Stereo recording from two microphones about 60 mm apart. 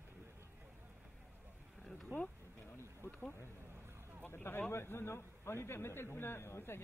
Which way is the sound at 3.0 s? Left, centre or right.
Left.